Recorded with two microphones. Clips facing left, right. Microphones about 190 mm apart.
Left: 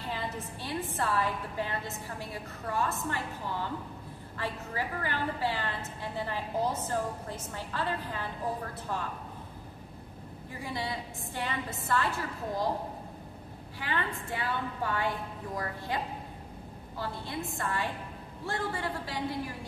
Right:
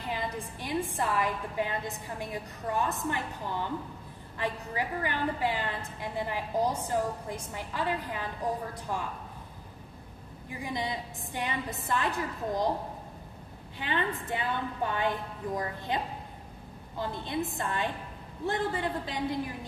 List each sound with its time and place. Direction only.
0.1 s a woman's voice: 15° right (ahead or behind)
10.5 s a woman's voice: 15° right (ahead or behind)
13.7 s a woman's voice: 20° right (ahead or behind)
17.0 s a woman's voice: 20° right (ahead or behind)